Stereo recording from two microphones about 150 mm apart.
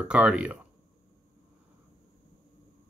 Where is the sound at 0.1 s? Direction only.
5° right (ahead or behind).